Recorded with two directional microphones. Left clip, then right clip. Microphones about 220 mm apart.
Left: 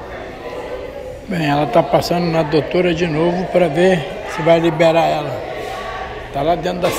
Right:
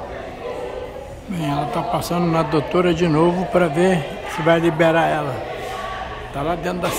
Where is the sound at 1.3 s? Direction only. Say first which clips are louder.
Left 8 dB; 5° right (ahead or behind).